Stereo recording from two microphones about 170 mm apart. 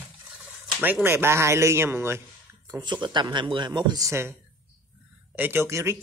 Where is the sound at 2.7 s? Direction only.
25° right (ahead or behind).